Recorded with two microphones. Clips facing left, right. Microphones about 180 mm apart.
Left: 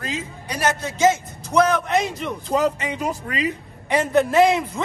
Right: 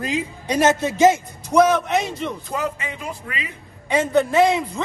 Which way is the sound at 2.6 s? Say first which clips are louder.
Left 5 dB; 40° left (ahead or behind).